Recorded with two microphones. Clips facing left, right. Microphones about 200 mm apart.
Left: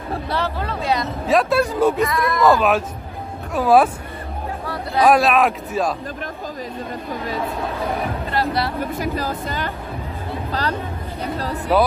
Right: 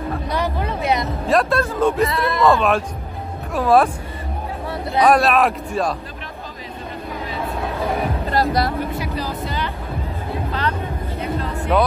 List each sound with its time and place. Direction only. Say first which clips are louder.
0.3 s music: right 1 dB; 15° right (ahead or behind)
1.2 s speech: left 2 dB; centre (ahead or behind)
2.0 s speech: even; 30° right (ahead or behind)
2.4 s speech: even; centre (ahead or behind)
5.0 s speech: even; centre (ahead or behind)
8.3 s music: right 3 dB; 40° right (ahead or behind)
8.9 s speech: left 2 dB; 45° left (ahead or behind)
11.7 s speech: left 1 dB; 5° left (ahead or behind)